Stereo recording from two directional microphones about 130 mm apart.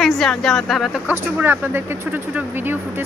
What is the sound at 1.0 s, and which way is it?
Speech, 15° right (ahead or behind).